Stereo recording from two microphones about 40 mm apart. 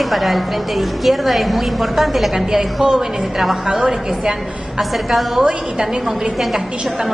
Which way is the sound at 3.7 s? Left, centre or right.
Centre.